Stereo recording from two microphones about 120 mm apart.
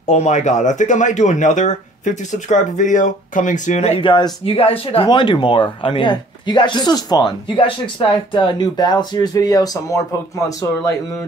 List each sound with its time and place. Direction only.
0.0 s speech: 75° left (ahead or behind)
4.0 s speech: 40° left (ahead or behind)
4.6 s speech: 50° left (ahead or behind); by 10.0 s 30° left (ahead or behind)